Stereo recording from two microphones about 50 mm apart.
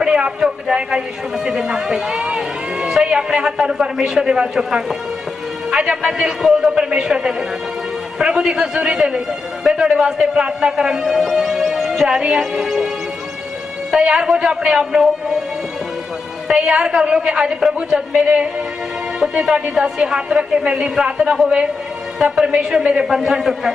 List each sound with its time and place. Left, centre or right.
0.0 s a man's voice: centre
2.2 s a sound: right
2.9 s a man's voice: centre
6.8 s a man's voice: centre
13.9 s a man's voice: centre
16.4 s a woman's voice: centre